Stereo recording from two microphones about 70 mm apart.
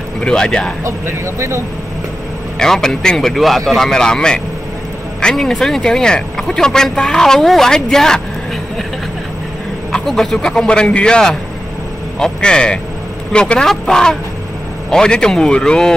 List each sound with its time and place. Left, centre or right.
0.2 s speech: centre
0.8 s speech: right
2.6 s speech: centre
9.9 s speech: centre